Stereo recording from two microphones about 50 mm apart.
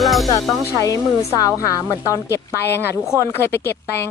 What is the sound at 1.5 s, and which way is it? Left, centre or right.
Speech, left.